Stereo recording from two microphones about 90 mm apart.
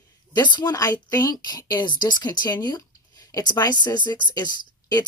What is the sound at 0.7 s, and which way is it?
Speech, 45° left (ahead or behind).